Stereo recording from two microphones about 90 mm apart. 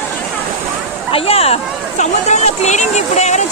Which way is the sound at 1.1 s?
90° left.